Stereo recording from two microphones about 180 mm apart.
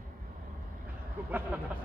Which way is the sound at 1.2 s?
10° right (ahead or behind).